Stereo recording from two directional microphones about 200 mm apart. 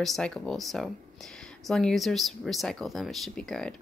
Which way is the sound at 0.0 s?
Centre (ahead or behind).